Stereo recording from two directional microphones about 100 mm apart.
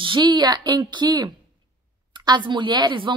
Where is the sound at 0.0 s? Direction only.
50° right (ahead or behind).